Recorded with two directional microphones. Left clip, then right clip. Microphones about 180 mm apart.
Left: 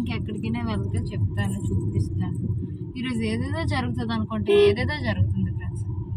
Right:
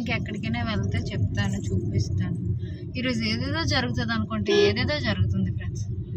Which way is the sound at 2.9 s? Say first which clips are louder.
Right 2 dB; 20° right (ahead or behind).